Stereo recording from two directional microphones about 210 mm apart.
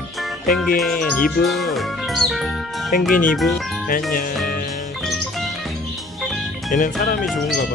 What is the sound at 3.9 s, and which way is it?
Speech, 40° left (ahead or behind).